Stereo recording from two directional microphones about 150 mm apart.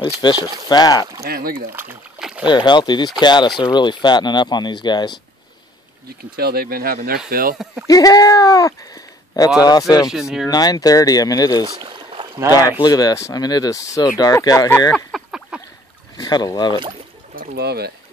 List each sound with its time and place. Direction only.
0.0 s speech: 30° left (ahead or behind)
1.2 s speech: 85° right
1.7 s speech: 15° right (ahead or behind)
2.1 s rowboat: 5° right (ahead or behind)
2.4 s speech: 30° left (ahead or behind)
6.3 s speech: 90° right
7.8 s speech: 25° left (ahead or behind)
10.1 s speech: 5° right (ahead or behind)
10.5 s speech: 25° left (ahead or behind)
11.7 s rowboat: 30° right (ahead or behind)
12.8 s speech: 25° left (ahead or behind)
15.0 s a sound: centre (ahead or behind)
16.2 s speech: 25° left (ahead or behind)
17.4 s speech: 80° right